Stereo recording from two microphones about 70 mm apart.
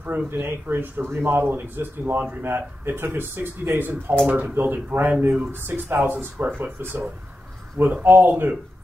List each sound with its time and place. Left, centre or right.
0.0 s speech: right
5.5 s speech: right